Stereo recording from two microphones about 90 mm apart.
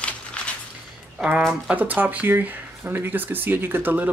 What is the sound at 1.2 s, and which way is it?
Speech, 10° right (ahead or behind).